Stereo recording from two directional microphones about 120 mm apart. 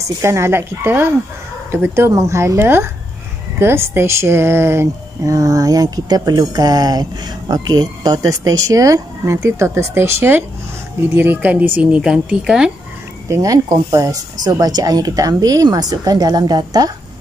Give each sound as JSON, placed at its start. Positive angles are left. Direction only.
{"t": 0.0, "sound": "a woman's voice", "side_deg": -25}
{"t": 13.3, "sound": "speech", "side_deg": -30}